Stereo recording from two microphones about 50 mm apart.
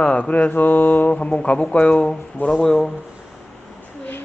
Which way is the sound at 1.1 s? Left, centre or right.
Left.